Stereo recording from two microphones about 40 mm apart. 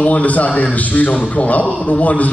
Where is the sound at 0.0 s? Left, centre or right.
Left.